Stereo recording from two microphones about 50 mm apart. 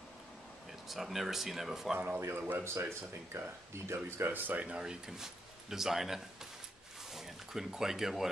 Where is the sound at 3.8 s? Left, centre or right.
Right.